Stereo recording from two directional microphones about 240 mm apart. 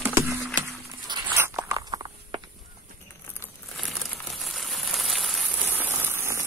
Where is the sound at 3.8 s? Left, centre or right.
Centre.